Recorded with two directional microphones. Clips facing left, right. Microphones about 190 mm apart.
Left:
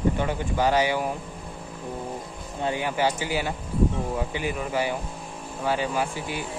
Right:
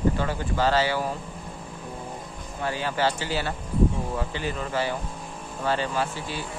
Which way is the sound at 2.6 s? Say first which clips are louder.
Left 1 dB; 15° left (ahead or behind).